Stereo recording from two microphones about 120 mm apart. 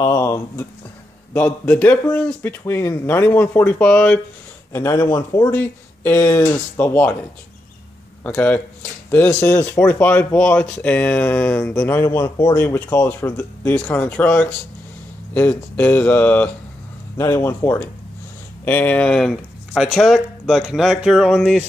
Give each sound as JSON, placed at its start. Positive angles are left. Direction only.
{"t": 0.0, "sound": "speech", "side_deg": 25}
{"t": 1.3, "sound": "speech", "side_deg": 10}
{"t": 4.7, "sound": "speech", "side_deg": 20}
{"t": 8.2, "sound": "speech", "side_deg": 15}